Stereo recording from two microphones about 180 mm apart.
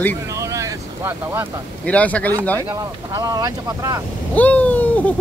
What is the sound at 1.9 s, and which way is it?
Speech, 5° left (ahead or behind).